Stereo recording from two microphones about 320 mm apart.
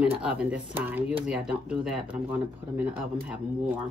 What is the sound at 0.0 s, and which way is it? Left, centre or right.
Speech, centre.